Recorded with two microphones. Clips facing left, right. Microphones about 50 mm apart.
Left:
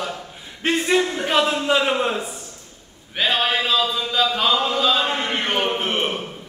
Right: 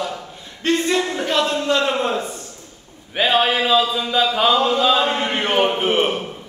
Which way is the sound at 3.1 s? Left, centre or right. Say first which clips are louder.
Right 3 dB; centre.